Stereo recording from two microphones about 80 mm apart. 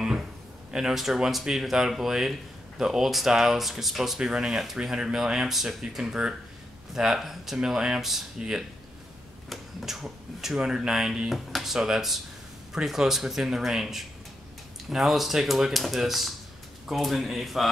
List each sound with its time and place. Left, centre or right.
0.7 s speech: centre